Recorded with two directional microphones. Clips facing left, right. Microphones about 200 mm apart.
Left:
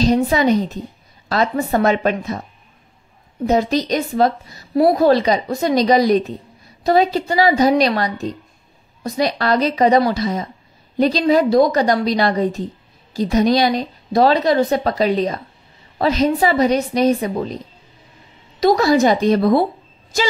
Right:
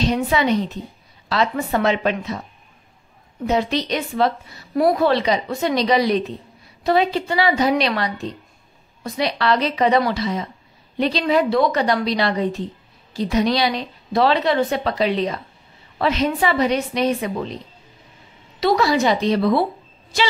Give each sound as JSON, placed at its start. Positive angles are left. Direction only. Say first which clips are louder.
{"t": 0.0, "sound": "a woman's voice", "louder": "left 4 dB", "side_deg": 40}
{"t": 3.4, "sound": "a woman's voice", "louder": "left 4 dB", "side_deg": 40}
{"t": 18.6, "sound": "a woman's voice", "louder": "left 4 dB", "side_deg": 45}